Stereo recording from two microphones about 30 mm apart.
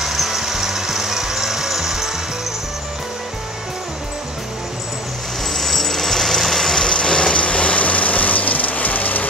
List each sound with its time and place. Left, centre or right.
0.0 s music: centre
5.5 s a sound: centre
6.7 s vehicle: left